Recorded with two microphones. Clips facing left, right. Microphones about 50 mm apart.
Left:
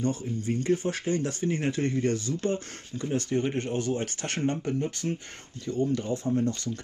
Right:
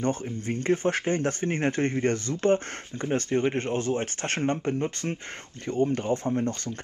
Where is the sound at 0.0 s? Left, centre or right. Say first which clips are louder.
Right 1 dB; right.